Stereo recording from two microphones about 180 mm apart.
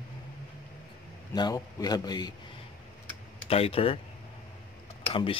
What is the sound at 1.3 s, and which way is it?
A man's voice, 20° left (ahead or behind).